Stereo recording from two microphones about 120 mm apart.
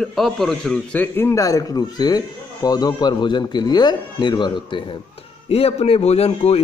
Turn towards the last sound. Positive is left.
turn(degrees=60)  # may be behind; listen again after turning